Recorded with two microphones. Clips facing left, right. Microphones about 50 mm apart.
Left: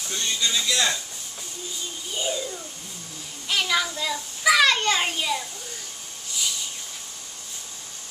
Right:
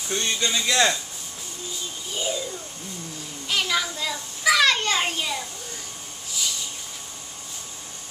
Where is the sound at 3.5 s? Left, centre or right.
Centre.